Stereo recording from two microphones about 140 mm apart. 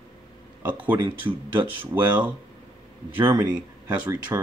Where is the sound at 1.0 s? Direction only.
40° right (ahead or behind).